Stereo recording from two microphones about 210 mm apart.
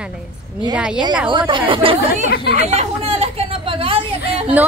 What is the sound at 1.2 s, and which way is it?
Speech, 25° right (ahead or behind).